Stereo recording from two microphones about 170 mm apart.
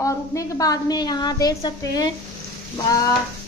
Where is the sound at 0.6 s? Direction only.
20° left (ahead or behind).